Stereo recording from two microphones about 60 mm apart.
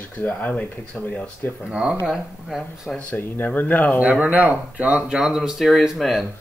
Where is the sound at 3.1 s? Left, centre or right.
Left.